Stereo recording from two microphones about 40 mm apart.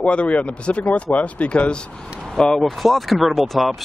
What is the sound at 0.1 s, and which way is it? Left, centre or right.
Speech, left.